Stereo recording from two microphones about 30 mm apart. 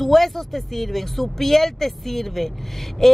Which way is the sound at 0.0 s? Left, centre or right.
Centre.